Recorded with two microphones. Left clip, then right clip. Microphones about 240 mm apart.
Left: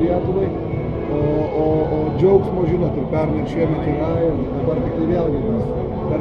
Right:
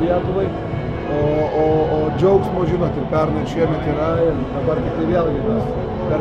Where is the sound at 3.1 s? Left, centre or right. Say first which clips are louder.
Right 2 dB; centre.